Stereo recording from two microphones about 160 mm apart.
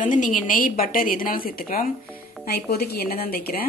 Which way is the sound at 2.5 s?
80° left.